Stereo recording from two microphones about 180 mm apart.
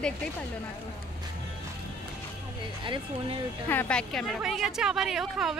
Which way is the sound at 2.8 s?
25° right (ahead or behind).